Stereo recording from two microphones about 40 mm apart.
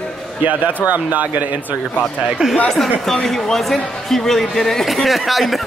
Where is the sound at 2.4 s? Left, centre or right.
Right.